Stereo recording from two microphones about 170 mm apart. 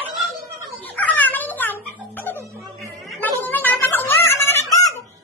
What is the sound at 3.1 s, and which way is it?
Music, 10° left (ahead or behind).